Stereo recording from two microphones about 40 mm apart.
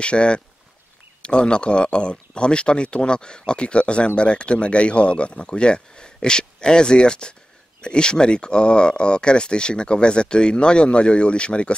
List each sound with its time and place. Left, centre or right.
0.0 s speech: left